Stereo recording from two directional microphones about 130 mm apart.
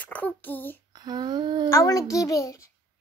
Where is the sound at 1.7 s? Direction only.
25° left (ahead or behind).